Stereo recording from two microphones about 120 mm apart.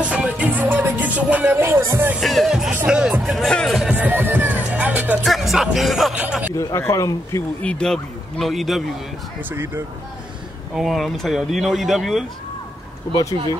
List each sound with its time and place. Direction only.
0.0 s music: 10° right (ahead or behind)
2.1 s speech: centre (ahead or behind)
3.9 s music: 15° right (ahead or behind)
5.2 s speech: centre (ahead or behind)
6.1 s speech: 10° right (ahead or behind)
6.5 s speech: 30° left (ahead or behind)
7.6 s speech: 5° left (ahead or behind)
9.4 s speech: 15° right (ahead or behind)
10.7 s speech: centre (ahead or behind)
13.1 s speech: 30° left (ahead or behind)